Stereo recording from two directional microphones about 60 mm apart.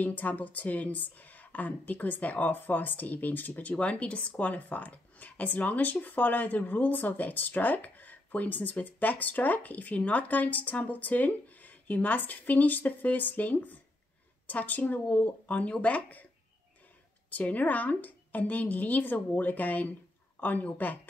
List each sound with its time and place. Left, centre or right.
0.0 s speech: left
17.3 s speech: left